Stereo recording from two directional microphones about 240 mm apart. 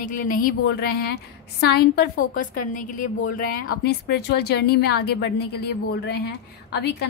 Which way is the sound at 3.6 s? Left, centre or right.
Left.